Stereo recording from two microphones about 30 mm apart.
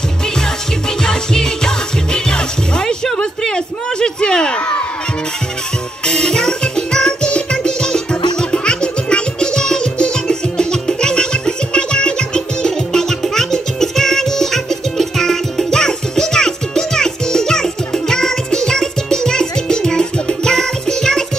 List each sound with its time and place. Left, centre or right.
0.4 s music: left
3.4 s a sound: left
4.6 s crowd: left
6.0 s music: left